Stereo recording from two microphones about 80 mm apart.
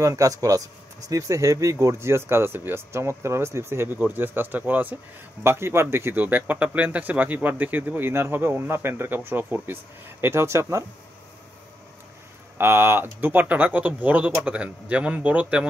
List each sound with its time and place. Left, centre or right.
0.0 s speech: right
10.2 s speech: right
12.5 s speech: right